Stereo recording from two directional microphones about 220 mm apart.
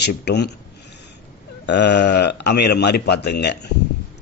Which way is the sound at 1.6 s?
50° left (ahead or behind).